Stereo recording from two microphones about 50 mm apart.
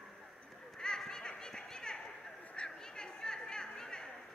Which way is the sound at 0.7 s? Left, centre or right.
Centre.